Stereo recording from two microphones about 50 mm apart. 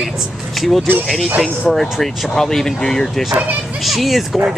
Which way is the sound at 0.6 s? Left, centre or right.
Centre.